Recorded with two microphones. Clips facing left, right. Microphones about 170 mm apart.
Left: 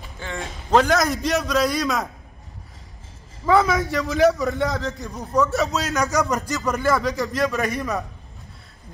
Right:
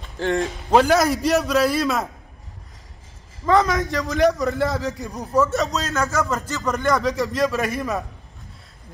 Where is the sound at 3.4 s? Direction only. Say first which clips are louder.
Even; 5° left (ahead or behind).